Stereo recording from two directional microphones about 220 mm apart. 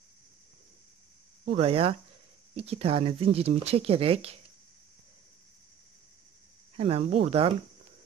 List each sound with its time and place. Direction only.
1.5 s speech: 25° right (ahead or behind)
6.8 s speech: 25° right (ahead or behind)